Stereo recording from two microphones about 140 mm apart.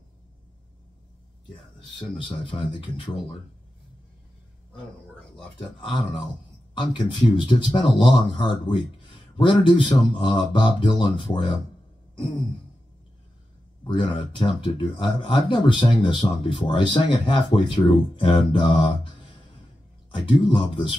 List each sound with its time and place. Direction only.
2.0 s speech: 35° left (ahead or behind)
5.6 s speech: 35° left (ahead or behind)
13.8 s speech: 35° left (ahead or behind)
20.2 s speech: 35° left (ahead or behind)